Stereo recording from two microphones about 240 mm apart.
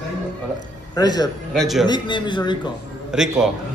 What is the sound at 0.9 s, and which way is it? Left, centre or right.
Speech, centre.